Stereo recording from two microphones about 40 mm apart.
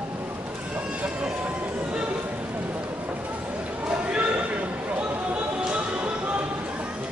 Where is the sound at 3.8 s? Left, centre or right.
Right.